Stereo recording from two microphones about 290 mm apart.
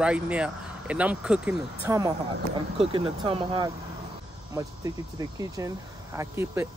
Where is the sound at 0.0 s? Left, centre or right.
Centre.